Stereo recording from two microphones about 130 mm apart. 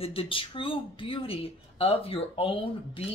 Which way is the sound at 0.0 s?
45° left (ahead or behind).